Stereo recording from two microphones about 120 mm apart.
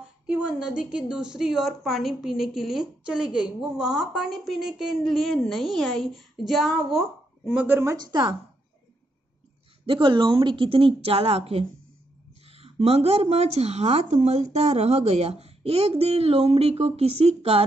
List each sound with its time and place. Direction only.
0.3 s speech: 5° right (ahead or behind); by 8.1 s 25° right (ahead or behind)
8.1 s speech: 40° right (ahead or behind)
9.8 s a woman's voice: 45° right (ahead or behind)